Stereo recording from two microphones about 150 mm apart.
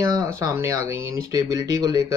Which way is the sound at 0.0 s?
20° right (ahead or behind).